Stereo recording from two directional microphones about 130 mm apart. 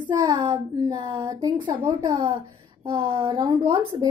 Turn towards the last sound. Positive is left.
turn(degrees=-45)  # may be behind; listen again after turning